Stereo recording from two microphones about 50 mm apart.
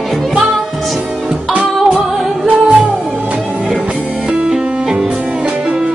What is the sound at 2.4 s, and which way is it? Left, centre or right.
Music, right.